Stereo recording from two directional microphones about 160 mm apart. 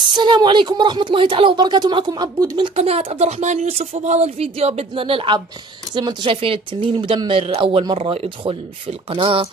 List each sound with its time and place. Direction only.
0.0 s speech: 30° right (ahead or behind)